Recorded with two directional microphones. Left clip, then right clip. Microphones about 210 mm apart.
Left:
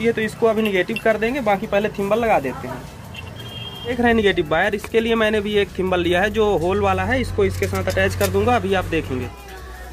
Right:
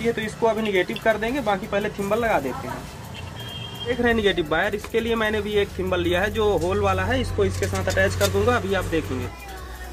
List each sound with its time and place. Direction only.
0.0 s speech: 45° left (ahead or behind)
3.9 s speech: 45° left (ahead or behind)